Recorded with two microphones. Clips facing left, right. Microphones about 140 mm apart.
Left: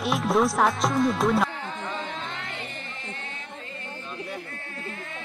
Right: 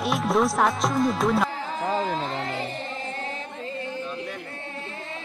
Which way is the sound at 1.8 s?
35° right (ahead or behind).